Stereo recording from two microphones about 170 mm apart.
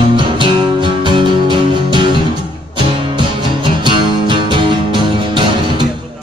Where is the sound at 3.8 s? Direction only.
30° right (ahead or behind).